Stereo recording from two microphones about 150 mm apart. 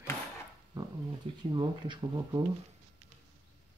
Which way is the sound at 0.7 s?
30° right (ahead or behind).